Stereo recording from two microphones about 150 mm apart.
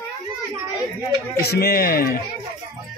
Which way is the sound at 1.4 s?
90° left.